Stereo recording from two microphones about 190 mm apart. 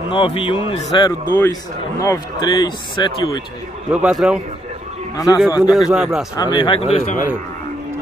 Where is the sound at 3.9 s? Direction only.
5° right (ahead or behind).